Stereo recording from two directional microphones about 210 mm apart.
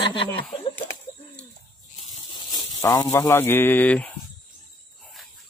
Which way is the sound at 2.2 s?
20° left (ahead or behind).